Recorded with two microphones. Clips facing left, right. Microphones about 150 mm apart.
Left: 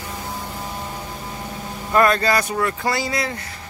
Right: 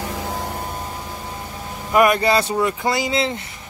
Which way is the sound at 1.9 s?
15° right (ahead or behind).